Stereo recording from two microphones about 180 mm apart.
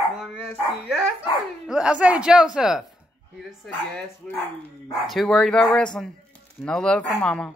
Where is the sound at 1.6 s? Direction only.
5° right (ahead or behind).